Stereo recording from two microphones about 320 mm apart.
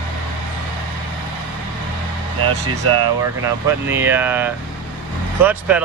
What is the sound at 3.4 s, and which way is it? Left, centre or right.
Speech, centre.